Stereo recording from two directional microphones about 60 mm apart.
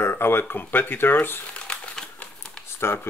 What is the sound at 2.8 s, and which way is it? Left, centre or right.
Speech, left.